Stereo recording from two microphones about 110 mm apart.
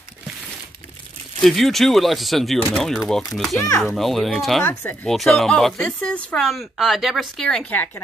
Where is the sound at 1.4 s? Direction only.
Centre (ahead or behind).